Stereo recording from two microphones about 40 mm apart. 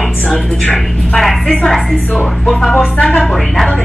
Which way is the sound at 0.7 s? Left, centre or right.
Centre.